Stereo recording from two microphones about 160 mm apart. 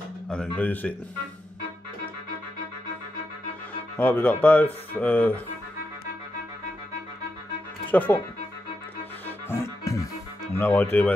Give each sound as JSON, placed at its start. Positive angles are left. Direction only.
{"t": 0.3, "sound": "speech", "side_deg": 10}
{"t": 3.9, "sound": "speech", "side_deg": 10}
{"t": 7.9, "sound": "speech", "side_deg": 10}
{"t": 9.5, "sound": "music", "side_deg": 20}
{"t": 10.5, "sound": "speech", "side_deg": 15}